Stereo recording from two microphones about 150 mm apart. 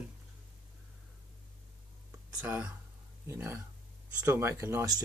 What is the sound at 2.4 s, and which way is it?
Speech, 10° right (ahead or behind).